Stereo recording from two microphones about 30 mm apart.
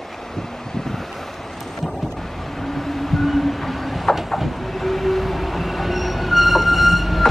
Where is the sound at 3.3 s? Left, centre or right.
Centre.